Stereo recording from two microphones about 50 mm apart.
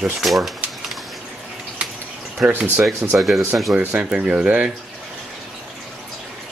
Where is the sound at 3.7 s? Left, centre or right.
Right.